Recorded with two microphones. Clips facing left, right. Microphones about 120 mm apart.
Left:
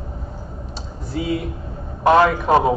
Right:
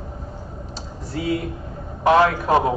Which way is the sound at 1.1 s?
Centre (ahead or behind).